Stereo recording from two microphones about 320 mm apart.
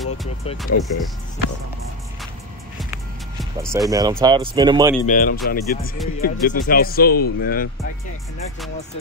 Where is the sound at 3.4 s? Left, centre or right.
Centre.